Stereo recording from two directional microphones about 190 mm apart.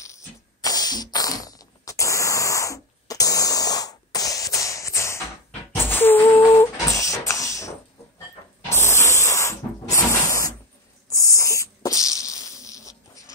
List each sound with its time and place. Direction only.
0.0 s music: 15° left (ahead or behind)
5.8 s beatboxing: 10° left (ahead or behind)
8.6 s spray: 15° left (ahead or behind)
11.1 s sneeze: 15° left (ahead or behind)